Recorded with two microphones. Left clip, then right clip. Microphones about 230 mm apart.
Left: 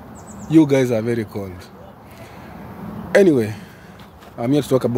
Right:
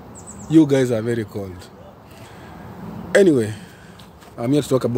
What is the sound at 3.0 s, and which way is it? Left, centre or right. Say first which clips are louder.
Speech: left 1 dB; centre.